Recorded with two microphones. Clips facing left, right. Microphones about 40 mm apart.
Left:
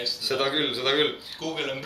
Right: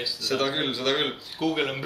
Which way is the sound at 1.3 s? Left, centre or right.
Centre.